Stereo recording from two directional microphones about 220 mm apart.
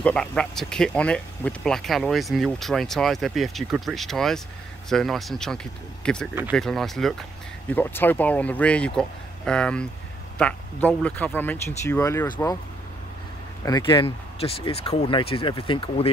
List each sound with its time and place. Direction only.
0.0 s speech: 5° left (ahead or behind)
13.7 s speech: 20° left (ahead or behind)